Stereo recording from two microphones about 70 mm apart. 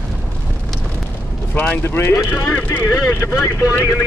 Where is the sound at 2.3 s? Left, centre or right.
Left.